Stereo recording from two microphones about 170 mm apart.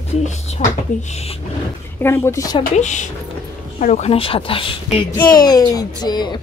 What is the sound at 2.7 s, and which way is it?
Speech, 45° left (ahead or behind).